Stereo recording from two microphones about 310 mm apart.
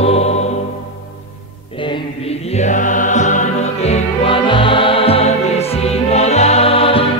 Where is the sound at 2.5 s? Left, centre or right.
Left.